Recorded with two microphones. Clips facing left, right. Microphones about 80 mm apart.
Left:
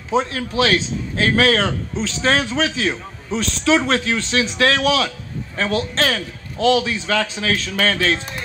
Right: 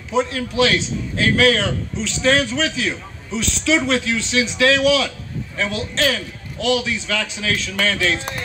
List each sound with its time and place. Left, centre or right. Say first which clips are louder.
0.1 s a man's voice: even; left